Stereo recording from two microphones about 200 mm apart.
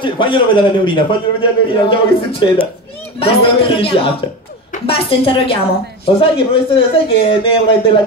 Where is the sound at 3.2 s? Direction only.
30° left (ahead or behind).